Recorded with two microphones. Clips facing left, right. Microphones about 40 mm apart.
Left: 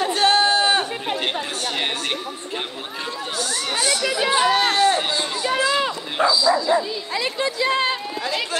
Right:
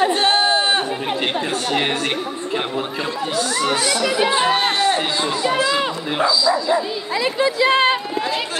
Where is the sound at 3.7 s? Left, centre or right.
Right.